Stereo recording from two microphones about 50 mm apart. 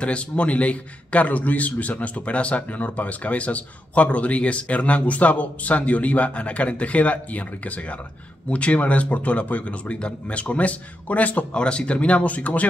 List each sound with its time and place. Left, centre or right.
0.0 s a man's voice: left
11.5 s a man's voice: left